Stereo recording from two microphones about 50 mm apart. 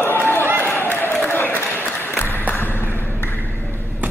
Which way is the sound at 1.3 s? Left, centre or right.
Left.